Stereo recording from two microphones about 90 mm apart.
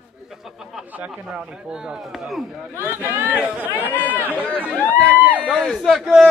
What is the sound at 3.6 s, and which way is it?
Speech, 20° left (ahead or behind).